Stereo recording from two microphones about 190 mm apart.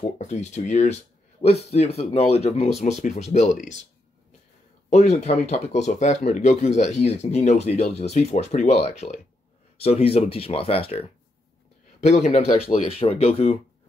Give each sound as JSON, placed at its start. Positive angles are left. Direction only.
{"t": 0.2, "sound": "speech", "side_deg": 35}
{"t": 4.8, "sound": "speech", "side_deg": 35}